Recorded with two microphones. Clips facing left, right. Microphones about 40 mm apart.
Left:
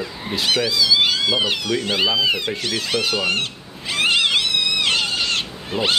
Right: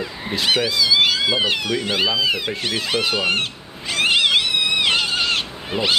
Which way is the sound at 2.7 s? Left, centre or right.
Centre.